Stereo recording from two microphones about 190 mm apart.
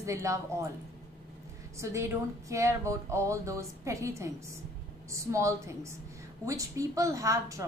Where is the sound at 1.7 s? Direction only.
15° right (ahead or behind).